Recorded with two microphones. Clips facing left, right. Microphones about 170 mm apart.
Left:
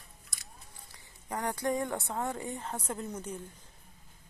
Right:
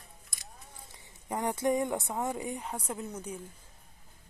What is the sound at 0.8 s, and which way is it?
Speech, 25° right (ahead or behind).